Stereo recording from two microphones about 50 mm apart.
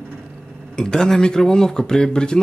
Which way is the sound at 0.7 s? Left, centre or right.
Centre.